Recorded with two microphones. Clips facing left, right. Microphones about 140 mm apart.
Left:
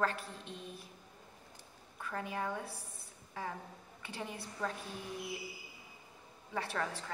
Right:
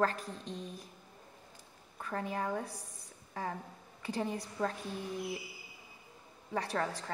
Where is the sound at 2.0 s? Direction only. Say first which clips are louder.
Right 3 dB; 35° right (ahead or behind).